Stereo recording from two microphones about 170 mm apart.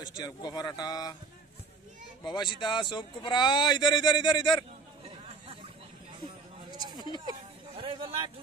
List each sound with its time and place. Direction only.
0.0 s a man's voice: 25° left (ahead or behind)
2.2 s a man's voice: 25° left (ahead or behind)
5.1 s chatter: 30° right (ahead or behind)
6.2 s a sound: 25° right (ahead or behind)